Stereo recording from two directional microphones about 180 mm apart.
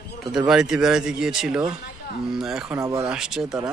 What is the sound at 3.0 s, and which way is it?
Speech, 5° right (ahead or behind).